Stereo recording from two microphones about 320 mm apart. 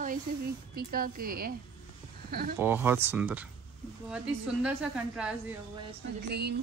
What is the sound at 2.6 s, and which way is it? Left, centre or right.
Speech, centre.